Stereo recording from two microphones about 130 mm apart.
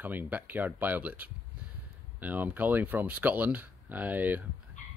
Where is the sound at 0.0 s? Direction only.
15° right (ahead or behind).